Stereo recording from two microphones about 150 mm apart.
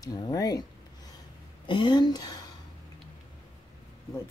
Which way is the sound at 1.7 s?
30° left (ahead or behind).